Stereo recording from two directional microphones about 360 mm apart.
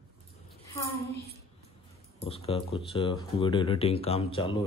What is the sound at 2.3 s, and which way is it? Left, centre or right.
Speech, centre.